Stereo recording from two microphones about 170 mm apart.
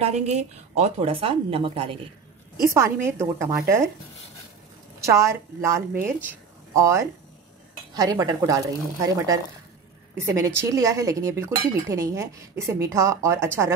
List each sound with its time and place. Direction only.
0.0 s speech: 40° right (ahead or behind)
2.7 s speech: 15° right (ahead or behind)
5.0 s speech: 15° right (ahead or behind)